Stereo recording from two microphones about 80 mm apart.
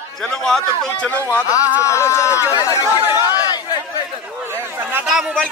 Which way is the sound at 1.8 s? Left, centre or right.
Left.